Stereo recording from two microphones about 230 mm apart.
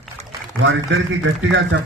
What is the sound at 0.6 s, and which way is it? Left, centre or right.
Speech, right.